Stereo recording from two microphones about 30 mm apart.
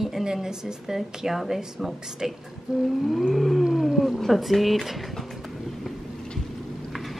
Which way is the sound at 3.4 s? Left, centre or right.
Centre.